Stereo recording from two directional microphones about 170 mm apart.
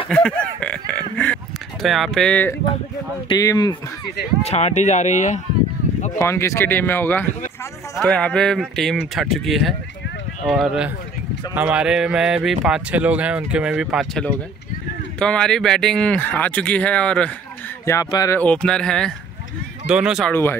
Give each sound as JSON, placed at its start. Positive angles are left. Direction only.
{"t": 0.1, "sound": "speech", "side_deg": 5}
{"t": 3.3, "sound": "speech", "side_deg": 25}
{"t": 4.5, "sound": "speech", "side_deg": 40}
{"t": 6.1, "sound": "speech", "side_deg": 15}
{"t": 17.8, "sound": "speech", "side_deg": 20}
{"t": 18.4, "sound": "speech", "side_deg": 5}
{"t": 20.2, "sound": "speech", "side_deg": 15}